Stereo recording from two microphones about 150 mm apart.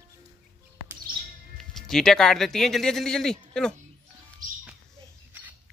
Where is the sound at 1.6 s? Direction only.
Centre (ahead or behind).